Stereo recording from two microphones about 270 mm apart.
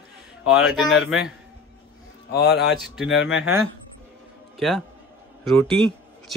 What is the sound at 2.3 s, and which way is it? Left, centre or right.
Speech, left.